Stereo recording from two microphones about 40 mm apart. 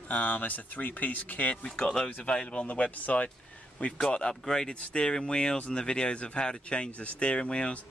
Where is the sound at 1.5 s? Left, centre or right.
Centre.